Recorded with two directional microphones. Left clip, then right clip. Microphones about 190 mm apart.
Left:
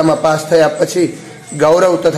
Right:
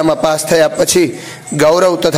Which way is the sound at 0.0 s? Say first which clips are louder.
Even; 35° right (ahead or behind).